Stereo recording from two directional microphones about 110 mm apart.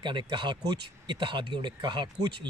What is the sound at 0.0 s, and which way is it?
A man's voice, 45° right (ahead or behind).